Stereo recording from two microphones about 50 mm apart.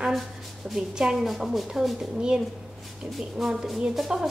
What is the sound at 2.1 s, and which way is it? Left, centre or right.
Speech, centre.